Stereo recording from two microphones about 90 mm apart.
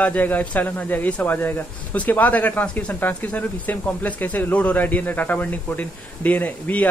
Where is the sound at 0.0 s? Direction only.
20° left (ahead or behind).